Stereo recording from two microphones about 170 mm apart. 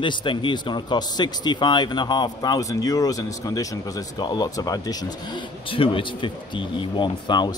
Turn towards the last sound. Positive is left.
turn(degrees=25)  # may be behind; listen again after turning